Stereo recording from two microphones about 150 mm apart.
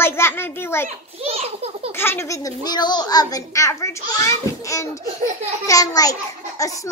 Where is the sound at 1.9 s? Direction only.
15° left (ahead or behind).